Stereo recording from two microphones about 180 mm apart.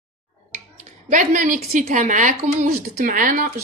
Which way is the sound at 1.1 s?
45° right (ahead or behind).